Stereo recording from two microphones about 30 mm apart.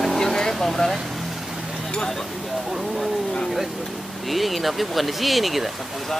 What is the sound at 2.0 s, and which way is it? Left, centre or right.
Speech, centre.